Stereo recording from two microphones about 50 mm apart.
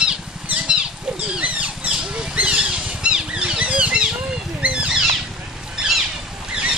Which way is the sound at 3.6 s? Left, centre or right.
Right.